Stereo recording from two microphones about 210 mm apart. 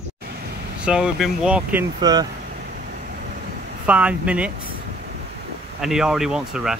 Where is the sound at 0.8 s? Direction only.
5° right (ahead or behind).